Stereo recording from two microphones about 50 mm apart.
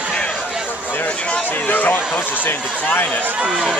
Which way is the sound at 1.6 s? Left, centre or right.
Left.